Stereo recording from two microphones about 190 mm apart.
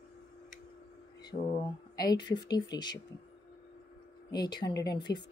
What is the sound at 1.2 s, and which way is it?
Speech, 20° left (ahead or behind).